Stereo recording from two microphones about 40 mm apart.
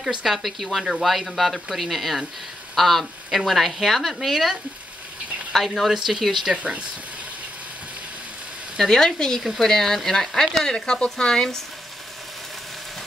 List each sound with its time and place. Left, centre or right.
0.0 s speech: centre
5.9 s speech: centre
8.9 s speech: centre